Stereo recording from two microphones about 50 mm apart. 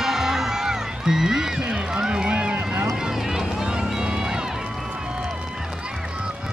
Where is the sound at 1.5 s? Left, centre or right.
Centre.